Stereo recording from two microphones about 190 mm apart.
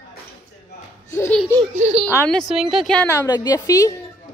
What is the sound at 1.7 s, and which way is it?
Speech, 35° right (ahead or behind).